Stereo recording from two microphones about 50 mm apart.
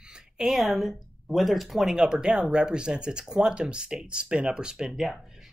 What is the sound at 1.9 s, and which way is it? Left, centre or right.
Speech, centre.